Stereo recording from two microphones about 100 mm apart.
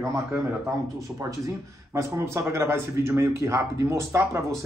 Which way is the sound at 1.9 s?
30° right (ahead or behind).